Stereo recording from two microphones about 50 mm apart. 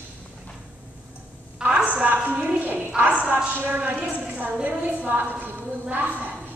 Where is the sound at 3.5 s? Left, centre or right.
Right.